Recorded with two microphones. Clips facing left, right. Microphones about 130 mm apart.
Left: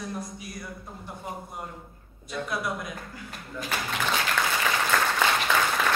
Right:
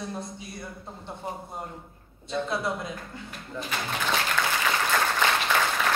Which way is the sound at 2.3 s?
25° right (ahead or behind).